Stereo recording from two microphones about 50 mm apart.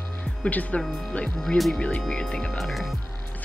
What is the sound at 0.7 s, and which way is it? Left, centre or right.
Speech, left.